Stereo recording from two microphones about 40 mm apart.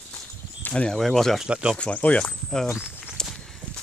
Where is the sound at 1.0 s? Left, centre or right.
Centre.